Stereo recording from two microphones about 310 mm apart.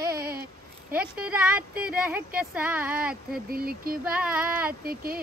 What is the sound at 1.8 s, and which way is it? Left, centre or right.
Speech, centre.